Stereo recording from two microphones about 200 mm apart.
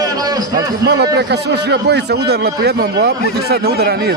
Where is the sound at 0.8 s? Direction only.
60° right (ahead or behind).